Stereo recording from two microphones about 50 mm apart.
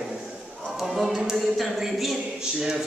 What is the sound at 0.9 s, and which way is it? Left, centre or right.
A woman's voice, centre.